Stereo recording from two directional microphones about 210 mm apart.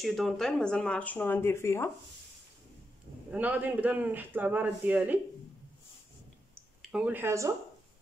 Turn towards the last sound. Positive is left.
turn(degrees=-15)  # may be behind; listen again after turning